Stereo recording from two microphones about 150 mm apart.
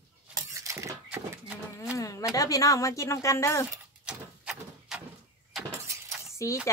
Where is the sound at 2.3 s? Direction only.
25° left (ahead or behind).